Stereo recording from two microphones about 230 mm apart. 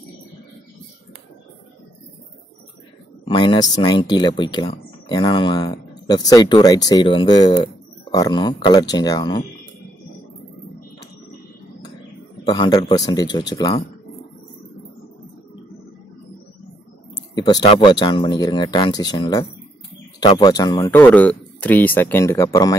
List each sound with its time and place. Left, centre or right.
3.3 s speech: centre
12.4 s speech: centre
17.4 s a sound: centre
17.6 s speech: left